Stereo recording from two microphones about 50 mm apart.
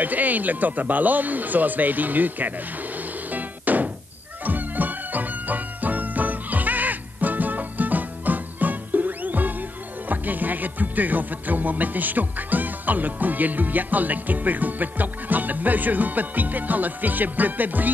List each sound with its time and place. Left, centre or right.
0.0 s music: right